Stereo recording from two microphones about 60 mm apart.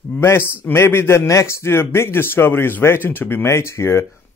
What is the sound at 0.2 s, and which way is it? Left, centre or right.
Speech, left.